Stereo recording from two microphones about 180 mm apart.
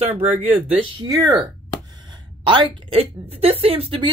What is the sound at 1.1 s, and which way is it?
A woman's voice, 20° right (ahead or behind).